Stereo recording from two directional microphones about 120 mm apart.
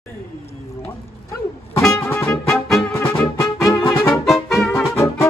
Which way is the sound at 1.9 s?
25° left (ahead or behind).